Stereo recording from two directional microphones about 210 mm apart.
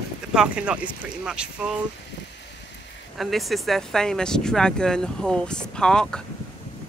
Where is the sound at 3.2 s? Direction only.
Centre (ahead or behind).